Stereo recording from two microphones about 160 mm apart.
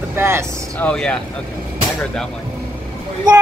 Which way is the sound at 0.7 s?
5° left (ahead or behind).